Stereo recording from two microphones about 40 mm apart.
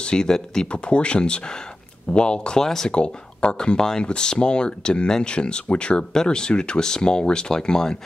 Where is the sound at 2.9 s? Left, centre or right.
Left.